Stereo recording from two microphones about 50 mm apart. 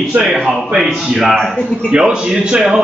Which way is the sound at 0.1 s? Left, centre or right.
Right.